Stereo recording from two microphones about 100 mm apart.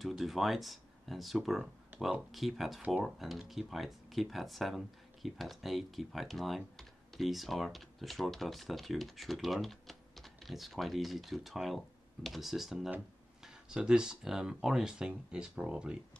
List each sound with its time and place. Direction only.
0.2 s speech: centre (ahead or behind)
1.9 s a sound: 15° right (ahead or behind)
2.3 s speech: centre (ahead or behind)